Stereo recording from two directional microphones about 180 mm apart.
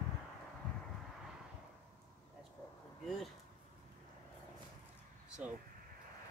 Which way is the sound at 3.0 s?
Centre (ahead or behind).